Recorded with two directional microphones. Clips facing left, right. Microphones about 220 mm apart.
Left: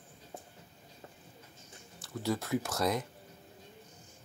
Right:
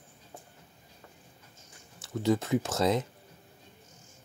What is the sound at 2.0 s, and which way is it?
Speech, 20° right (ahead or behind).